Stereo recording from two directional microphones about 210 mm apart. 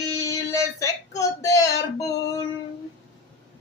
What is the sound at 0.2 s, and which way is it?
Child singing, 15° left (ahead or behind).